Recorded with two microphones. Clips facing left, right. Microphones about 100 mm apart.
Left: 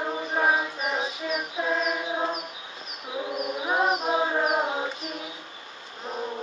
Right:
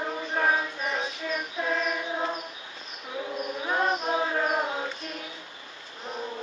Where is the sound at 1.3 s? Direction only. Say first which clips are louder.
Left 2 dB; 15° left (ahead or behind).